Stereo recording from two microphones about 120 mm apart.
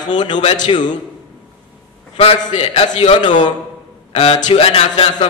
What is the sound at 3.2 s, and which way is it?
Speech, 40° left (ahead or behind).